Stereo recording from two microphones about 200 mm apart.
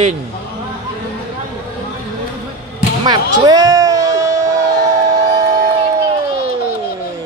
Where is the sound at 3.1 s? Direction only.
20° right (ahead or behind).